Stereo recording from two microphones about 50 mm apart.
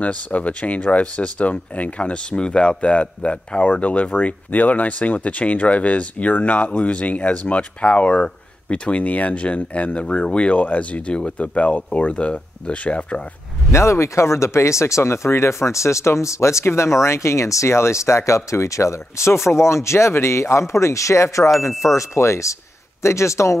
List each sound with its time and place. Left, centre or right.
0.0 s speech: left
13.7 s speech: left